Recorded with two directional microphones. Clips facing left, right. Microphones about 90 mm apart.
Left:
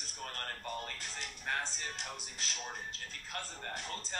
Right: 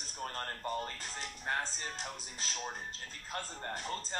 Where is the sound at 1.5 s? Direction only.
30° right (ahead or behind).